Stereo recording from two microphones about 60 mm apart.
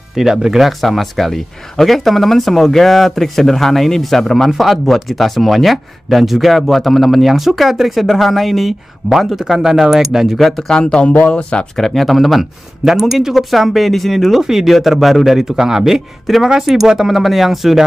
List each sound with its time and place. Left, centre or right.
0.1 s speech: centre; by 11.6 s left
11.7 s speech: centre